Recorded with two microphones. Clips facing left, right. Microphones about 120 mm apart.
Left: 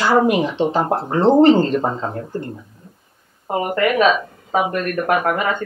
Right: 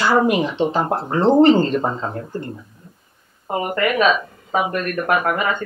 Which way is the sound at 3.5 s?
25° left (ahead or behind).